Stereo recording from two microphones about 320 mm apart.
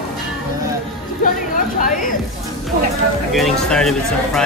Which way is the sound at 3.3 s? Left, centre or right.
Centre.